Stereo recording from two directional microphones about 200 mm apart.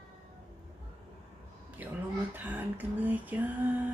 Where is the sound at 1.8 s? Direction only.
10° right (ahead or behind).